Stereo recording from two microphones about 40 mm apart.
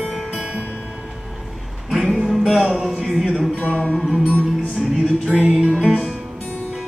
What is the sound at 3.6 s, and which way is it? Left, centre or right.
Music, left.